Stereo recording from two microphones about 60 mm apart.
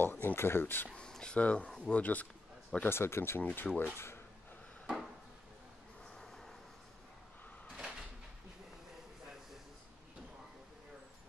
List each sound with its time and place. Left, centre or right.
0.0 s a sound: left
0.9 s speech: centre
2.8 s speech: left
3.5 s speech: left
6.2 s a sound: centre
7.7 s cupboard open or close: centre